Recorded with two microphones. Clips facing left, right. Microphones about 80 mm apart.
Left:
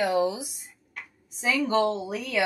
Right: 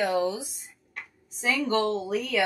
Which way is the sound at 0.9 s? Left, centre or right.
Centre.